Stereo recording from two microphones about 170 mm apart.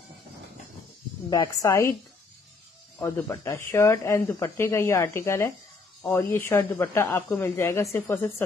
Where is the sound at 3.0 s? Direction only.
15° left (ahead or behind).